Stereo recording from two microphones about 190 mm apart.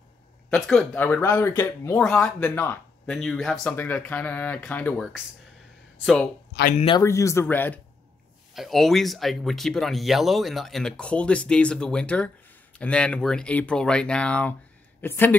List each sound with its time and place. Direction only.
0.5 s speech: 5° left (ahead or behind)
7.0 s speech: 15° left (ahead or behind)